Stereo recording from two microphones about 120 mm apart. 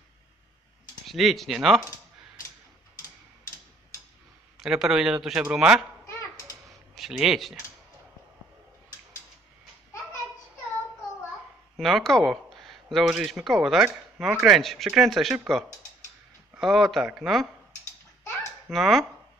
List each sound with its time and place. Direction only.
1.0 s speech: centre (ahead or behind)
4.6 s speech: 5° right (ahead or behind)
6.0 s a sound: 25° left (ahead or behind)
7.0 s speech: 5° right (ahead or behind)
11.7 s speech: centre (ahead or behind)
18.7 s speech: centre (ahead or behind)